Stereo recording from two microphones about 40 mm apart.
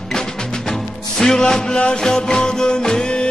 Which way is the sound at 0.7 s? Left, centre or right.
Centre.